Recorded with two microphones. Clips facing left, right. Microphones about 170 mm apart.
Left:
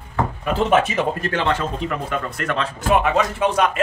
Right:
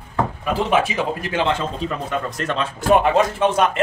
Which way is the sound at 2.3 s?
20° right (ahead or behind).